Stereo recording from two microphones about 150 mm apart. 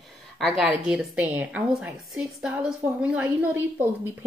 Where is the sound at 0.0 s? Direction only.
Centre (ahead or behind).